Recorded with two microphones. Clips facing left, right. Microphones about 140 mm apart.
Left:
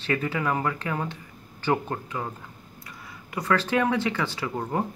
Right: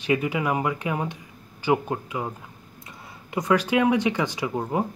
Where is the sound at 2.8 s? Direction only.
25° right (ahead or behind).